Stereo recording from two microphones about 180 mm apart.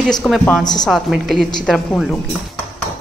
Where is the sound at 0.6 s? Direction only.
20° left (ahead or behind).